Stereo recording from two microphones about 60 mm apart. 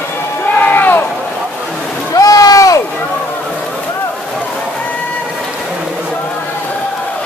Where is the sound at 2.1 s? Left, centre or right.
Left.